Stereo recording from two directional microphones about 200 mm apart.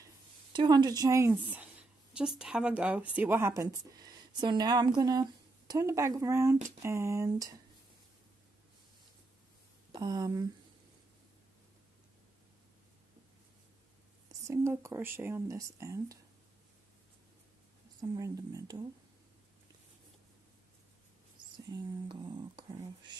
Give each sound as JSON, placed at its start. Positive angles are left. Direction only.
{"t": 0.0, "sound": "speech", "side_deg": -20}
{"t": 9.9, "sound": "speech", "side_deg": -20}
{"t": 14.5, "sound": "speech", "side_deg": -15}
{"t": 18.0, "sound": "speech", "side_deg": -20}
{"t": 21.6, "sound": "a sound", "side_deg": -20}